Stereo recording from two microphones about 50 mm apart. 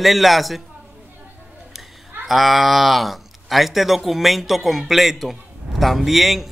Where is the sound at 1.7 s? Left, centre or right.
Centre.